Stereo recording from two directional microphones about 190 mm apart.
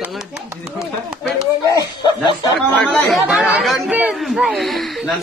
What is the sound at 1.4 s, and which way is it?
Speech, 20° left (ahead or behind).